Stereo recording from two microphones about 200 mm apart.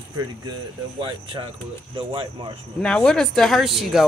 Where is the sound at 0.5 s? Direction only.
25° right (ahead or behind).